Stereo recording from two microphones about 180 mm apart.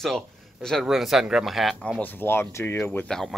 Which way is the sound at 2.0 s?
10° left (ahead or behind).